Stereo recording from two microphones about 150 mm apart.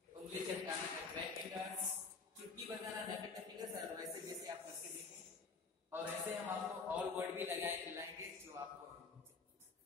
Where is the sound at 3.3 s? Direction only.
25° right (ahead or behind).